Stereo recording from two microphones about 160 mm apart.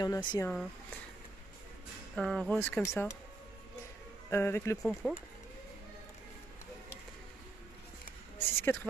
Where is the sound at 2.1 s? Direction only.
5° left (ahead or behind).